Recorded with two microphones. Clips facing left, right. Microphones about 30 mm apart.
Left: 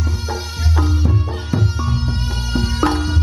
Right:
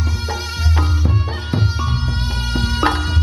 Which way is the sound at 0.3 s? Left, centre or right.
Right.